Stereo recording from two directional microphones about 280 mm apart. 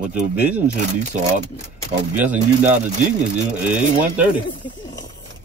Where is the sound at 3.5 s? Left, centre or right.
Centre.